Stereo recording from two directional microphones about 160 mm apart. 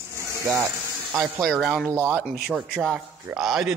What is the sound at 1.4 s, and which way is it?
A man's voice, centre (ahead or behind).